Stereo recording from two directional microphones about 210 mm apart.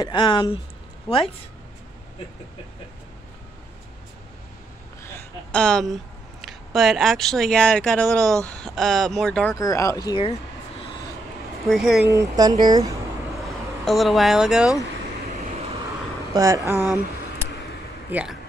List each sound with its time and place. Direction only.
0.0 s speech: 25° left (ahead or behind)
5.0 s a sound: 10° left (ahead or behind)
6.4 s speech: centre (ahead or behind); by 10.3 s 20° left (ahead or behind)
11.6 s speech: centre (ahead or behind)
12.1 s speech: 15° right (ahead or behind)
13.4 s speech: centre (ahead or behind)
16.3 s speech: 15° right (ahead or behind)
18.1 s speech: 5° right (ahead or behind)